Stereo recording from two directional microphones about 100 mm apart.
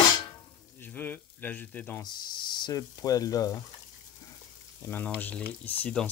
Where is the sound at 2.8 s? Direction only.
35° left (ahead or behind).